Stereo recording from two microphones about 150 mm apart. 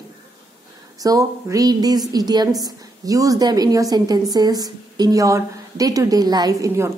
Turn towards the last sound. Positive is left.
turn(degrees=-20)  # may be behind; listen again after turning